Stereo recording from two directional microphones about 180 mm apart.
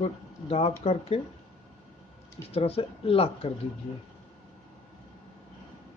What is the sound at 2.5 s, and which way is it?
Speech, 35° left (ahead or behind).